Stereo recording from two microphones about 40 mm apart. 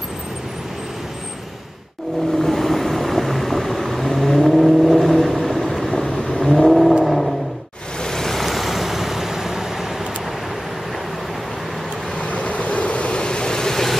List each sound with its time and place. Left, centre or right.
2.3 s vehicle: centre
8.0 s vehicle: centre
12.2 s vehicle: left; by 13.9 s centre